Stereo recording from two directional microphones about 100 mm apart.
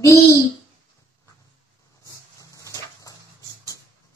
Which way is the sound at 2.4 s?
35° left (ahead or behind).